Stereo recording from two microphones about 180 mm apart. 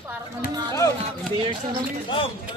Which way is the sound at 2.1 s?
30° left (ahead or behind).